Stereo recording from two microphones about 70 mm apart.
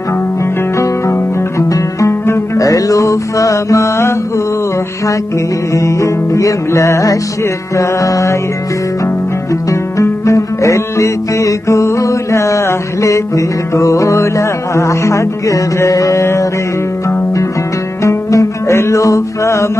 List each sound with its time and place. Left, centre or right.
0.7 s music: left
2.5 s music: left
5.7 s music: left
18.0 s music: left